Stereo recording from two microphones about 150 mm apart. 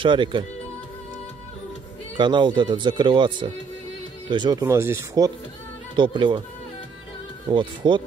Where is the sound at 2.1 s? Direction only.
30° right (ahead or behind).